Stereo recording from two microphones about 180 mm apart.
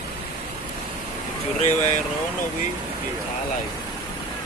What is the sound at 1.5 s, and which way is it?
Speech, 40° left (ahead or behind).